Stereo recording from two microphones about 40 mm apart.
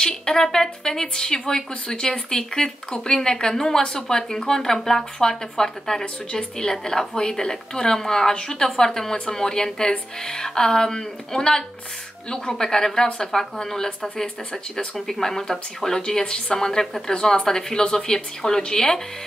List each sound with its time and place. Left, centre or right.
0.0 s a woman's voice: centre